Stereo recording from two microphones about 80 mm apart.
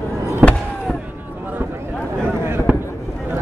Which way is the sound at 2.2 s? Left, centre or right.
Right.